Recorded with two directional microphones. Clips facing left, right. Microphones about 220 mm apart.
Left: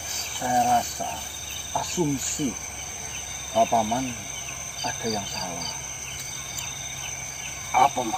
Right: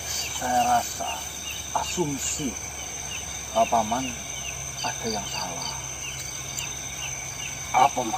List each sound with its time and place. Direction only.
0.5 s speech: 15° left (ahead or behind)
3.5 s speech: 15° left (ahead or behind)
7.7 s speech: centre (ahead or behind)